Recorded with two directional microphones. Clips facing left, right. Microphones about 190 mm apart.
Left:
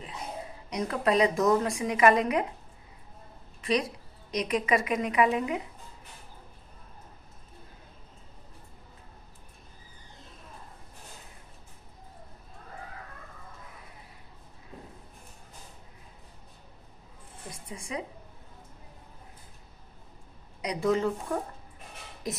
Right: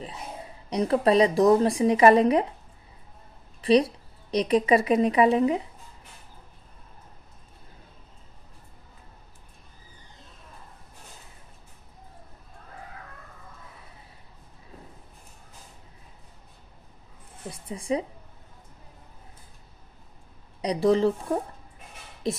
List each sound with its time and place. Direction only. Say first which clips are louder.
0.7 s speech: right 6 dB; 30° right (ahead or behind)
3.6 s a woman's voice: right 8 dB; 30° right (ahead or behind)
17.5 s a sound: right 10 dB; 35° right (ahead or behind)
20.6 s speech: right 5 dB; 35° right (ahead or behind)
22.2 s speech: right 7 dB; 25° right (ahead or behind)